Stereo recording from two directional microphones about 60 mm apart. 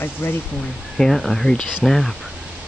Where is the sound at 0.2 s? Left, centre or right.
Left.